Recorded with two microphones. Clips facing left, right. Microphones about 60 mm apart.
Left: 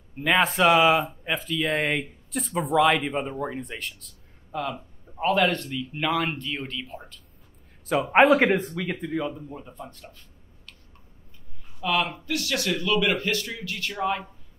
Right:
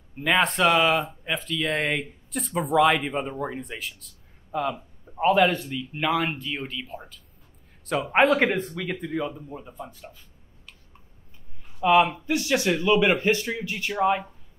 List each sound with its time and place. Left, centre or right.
0.2 s speech: centre
8.1 s speech: centre
11.8 s speech: right